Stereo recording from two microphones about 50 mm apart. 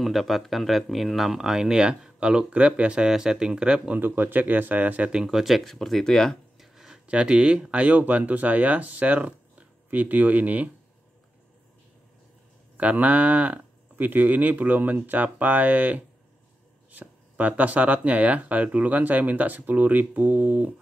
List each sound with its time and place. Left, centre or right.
0.0 s speech: centre
3.9 s speech: right
5.1 s speech: centre
5.4 s speech: centre
5.8 s speech: centre
6.6 s a sound: centre
7.1 s speech: right
12.7 s speech: right